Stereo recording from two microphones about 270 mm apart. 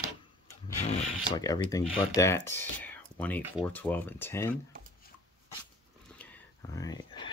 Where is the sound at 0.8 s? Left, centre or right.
Left.